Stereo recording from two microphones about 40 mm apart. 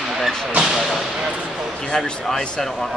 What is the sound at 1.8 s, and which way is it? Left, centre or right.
Speech, left.